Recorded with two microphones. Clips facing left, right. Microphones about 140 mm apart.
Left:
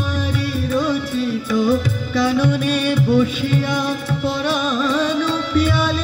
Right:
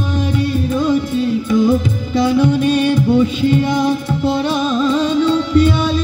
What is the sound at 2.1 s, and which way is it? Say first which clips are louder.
Music: right 4 dB; 15° right (ahead or behind).